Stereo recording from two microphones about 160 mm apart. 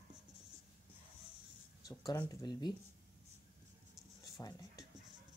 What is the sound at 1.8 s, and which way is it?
Speech, 25° left (ahead or behind).